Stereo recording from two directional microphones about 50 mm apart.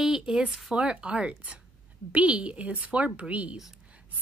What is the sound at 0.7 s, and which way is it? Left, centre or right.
Speech, right.